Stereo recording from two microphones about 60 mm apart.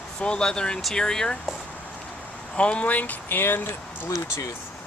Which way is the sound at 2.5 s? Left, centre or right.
Centre.